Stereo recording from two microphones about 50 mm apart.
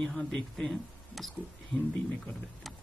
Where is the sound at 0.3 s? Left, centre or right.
Centre.